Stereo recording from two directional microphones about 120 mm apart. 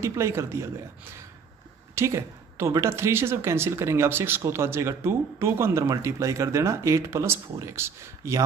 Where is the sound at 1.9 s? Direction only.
25° right (ahead or behind).